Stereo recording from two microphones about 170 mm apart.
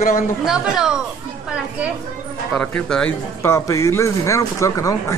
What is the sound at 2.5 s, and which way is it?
A man's voice, 5° left (ahead or behind).